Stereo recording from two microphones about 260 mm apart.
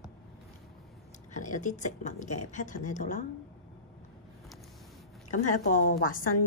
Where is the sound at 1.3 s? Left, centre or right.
Left.